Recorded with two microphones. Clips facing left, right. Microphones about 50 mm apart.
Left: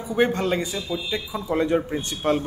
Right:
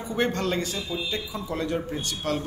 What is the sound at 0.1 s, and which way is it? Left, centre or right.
Speech, centre.